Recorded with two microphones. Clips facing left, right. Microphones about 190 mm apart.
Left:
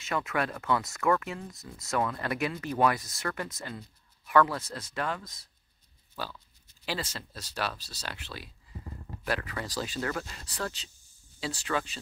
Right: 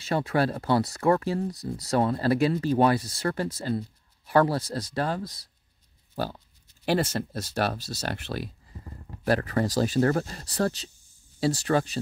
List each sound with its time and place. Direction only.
0.0 s speech: 35° right (ahead or behind)
6.1 s a sound: 50° right (ahead or behind)
6.9 s speech: 50° right (ahead or behind)